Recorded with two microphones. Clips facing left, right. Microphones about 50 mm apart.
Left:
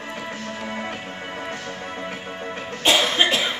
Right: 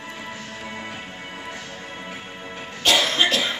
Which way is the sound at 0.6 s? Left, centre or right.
Left.